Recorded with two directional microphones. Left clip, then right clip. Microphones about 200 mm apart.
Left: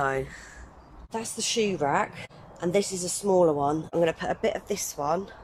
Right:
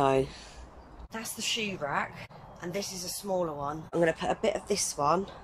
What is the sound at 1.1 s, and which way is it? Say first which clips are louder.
A woman's voice: left 5 dB; 20° left (ahead or behind).